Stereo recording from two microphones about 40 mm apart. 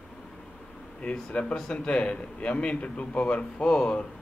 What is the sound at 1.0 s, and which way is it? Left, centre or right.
A man's voice, left.